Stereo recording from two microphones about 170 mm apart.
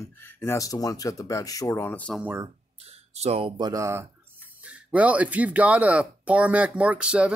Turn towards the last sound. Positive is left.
turn(degrees=-5)  # may be behind; listen again after turning